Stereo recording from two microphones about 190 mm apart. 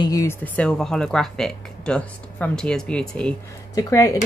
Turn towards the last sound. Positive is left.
turn(degrees=15)  # may be behind; listen again after turning